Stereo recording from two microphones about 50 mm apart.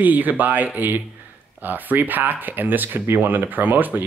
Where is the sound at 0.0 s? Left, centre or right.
Right.